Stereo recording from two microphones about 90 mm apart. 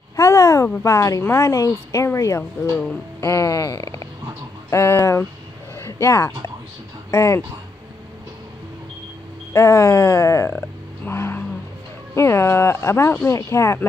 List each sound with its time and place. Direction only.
0.1 s a sound: 40° left (ahead or behind)
0.8 s speech: 40° left (ahead or behind)
3.2 s a sound: 35° left (ahead or behind)
4.6 s speech: 30° left (ahead or behind)
5.8 s a sound: 30° left (ahead or behind)
7.1 s speech: 35° left (ahead or behind)
9.5 s speech: 35° left (ahead or behind)
11.1 s vehicle: 30° left (ahead or behind)
12.2 s speech: 30° left (ahead or behind)